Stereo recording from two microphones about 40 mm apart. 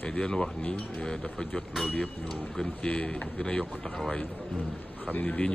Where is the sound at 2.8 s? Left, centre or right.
Left.